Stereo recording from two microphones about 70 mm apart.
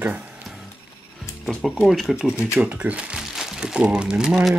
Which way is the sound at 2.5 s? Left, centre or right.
Centre.